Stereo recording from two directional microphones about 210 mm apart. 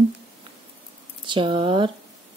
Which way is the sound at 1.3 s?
25° right (ahead or behind).